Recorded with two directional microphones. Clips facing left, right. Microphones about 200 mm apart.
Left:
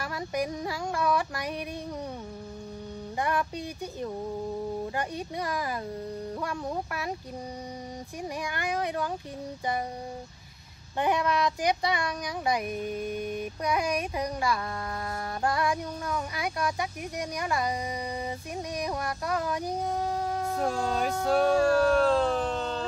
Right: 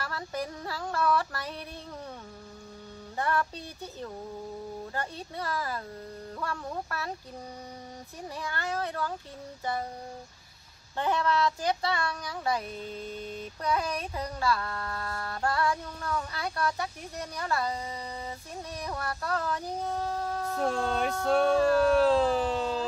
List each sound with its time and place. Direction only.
0.0 s a child's voice: 15° left (ahead or behind)
3.2 s a child's voice: 15° left (ahead or behind)
8.2 s a child's voice: 15° left (ahead or behind)
11.0 s a child's voice: 15° left (ahead or behind)
18.8 s a child's voice: 15° left (ahead or behind)
20.5 s music: centre (ahead or behind)